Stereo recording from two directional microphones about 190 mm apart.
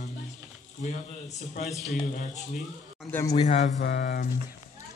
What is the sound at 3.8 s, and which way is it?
Speech, 55° left (ahead or behind).